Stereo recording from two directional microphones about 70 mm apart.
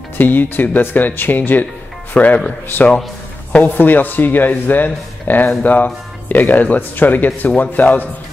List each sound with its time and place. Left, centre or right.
0.2 s speech: left